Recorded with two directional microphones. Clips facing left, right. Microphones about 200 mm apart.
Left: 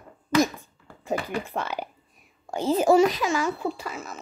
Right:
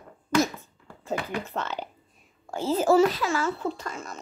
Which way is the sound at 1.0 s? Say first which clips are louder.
Left 2 dB; 10° left (ahead or behind).